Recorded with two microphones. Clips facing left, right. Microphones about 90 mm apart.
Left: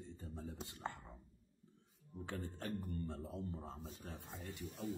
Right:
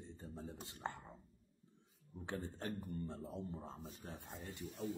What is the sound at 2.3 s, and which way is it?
A man's voice, 20° right (ahead or behind).